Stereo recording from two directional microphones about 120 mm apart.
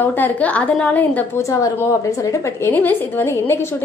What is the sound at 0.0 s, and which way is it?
A woman's voice, 15° left (ahead or behind).